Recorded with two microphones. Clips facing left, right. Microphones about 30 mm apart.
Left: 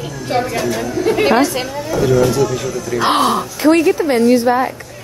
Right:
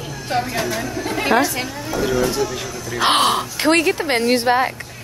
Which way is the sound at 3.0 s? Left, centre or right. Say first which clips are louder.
Left 2 dB; right.